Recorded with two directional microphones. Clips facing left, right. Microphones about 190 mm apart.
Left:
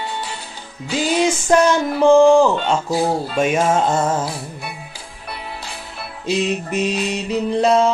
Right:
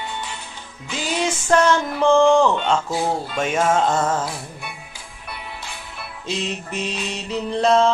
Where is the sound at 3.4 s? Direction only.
15° left (ahead or behind).